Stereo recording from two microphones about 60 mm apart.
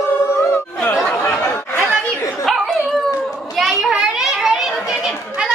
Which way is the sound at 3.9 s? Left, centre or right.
Centre.